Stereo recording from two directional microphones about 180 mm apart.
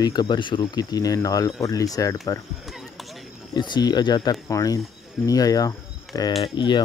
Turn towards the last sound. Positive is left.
turn(degrees=25)  # may be behind; listen again after turning